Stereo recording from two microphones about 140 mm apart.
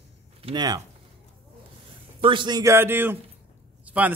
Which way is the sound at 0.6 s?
25° right (ahead or behind).